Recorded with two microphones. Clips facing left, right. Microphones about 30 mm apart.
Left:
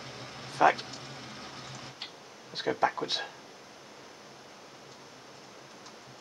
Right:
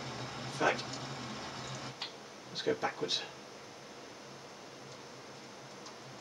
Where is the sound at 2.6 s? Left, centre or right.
Left.